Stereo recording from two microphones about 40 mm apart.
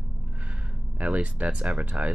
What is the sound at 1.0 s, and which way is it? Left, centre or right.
Speech, right.